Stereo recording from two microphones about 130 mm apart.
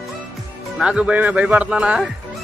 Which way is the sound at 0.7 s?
10° right (ahead or behind).